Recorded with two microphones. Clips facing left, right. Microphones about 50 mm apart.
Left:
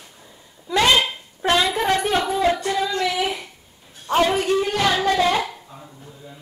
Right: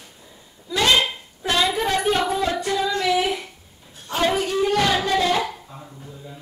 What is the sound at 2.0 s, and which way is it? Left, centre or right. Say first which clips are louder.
Speech: even; centre.